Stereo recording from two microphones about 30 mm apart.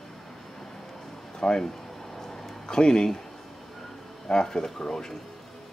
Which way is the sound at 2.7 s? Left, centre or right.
Left.